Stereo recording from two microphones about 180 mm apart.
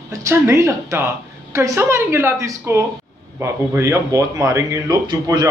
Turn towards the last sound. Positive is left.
turn(degrees=-20)  # may be behind; listen again after turning